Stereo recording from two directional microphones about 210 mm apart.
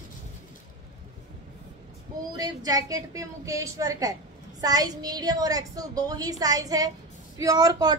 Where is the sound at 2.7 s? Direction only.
15° right (ahead or behind).